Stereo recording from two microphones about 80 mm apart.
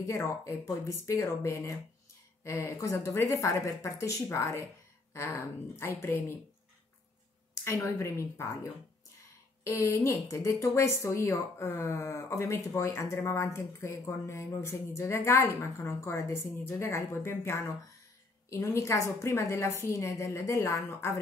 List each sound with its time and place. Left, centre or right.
0.0 s speech: left
7.6 s speech: left
9.7 s speech: left